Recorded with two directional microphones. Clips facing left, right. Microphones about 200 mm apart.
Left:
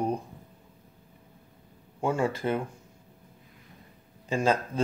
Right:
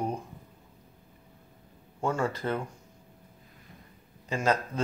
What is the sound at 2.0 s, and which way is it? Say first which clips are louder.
Speech: left 2 dB; 10° left (ahead or behind).